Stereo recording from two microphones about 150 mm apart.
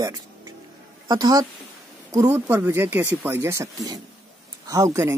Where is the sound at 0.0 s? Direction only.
25° right (ahead or behind).